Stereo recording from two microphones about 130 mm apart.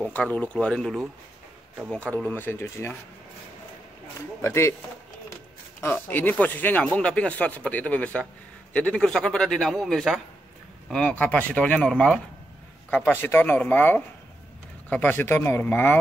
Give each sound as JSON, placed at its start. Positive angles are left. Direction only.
{"t": 0.0, "sound": "speech", "side_deg": 10}
{"t": 4.4, "sound": "speech", "side_deg": 20}
{"t": 5.8, "sound": "a man's voice", "side_deg": 15}